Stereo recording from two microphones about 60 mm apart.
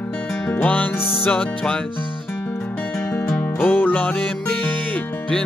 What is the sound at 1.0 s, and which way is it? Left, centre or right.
Music, left.